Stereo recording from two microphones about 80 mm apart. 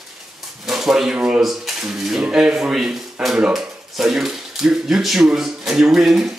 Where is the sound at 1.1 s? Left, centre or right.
Centre.